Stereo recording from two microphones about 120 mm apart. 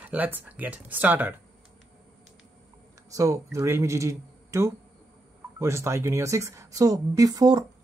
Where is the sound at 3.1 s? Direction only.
30° right (ahead or behind).